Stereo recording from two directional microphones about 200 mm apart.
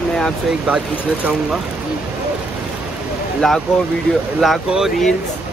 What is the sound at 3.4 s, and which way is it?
Speech, centre (ahead or behind).